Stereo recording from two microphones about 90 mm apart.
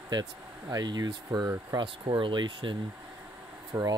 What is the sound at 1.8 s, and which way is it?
Speech, 65° right (ahead or behind).